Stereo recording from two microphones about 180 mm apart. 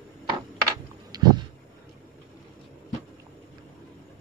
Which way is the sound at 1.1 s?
20° right (ahead or behind).